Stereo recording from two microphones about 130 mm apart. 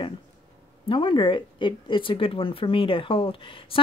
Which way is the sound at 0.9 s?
40° left (ahead or behind).